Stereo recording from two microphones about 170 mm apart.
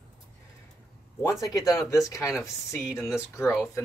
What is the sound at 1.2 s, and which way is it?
Speech, 20° left (ahead or behind).